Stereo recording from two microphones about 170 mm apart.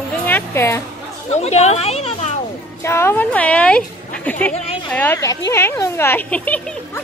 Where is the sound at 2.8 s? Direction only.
15° left (ahead or behind).